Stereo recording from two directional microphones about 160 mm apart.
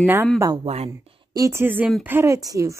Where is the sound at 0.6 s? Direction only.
40° right (ahead or behind).